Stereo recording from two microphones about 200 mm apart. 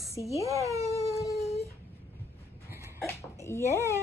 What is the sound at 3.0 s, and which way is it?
Dog, 15° left (ahead or behind).